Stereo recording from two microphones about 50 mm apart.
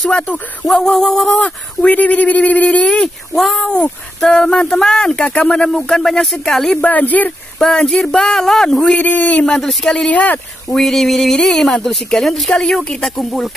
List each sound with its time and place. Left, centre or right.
0.7 s speech: centre
1.3 s speech: left
5.5 s speech: centre
6.8 s speech: left
7.5 s speech: centre
8.9 s speech: left
9.6 s speech: centre
10.1 s speech: left
10.7 s speech: centre